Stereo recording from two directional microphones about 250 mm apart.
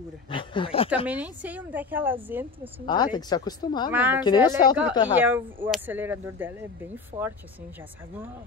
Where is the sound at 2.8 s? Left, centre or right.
Centre.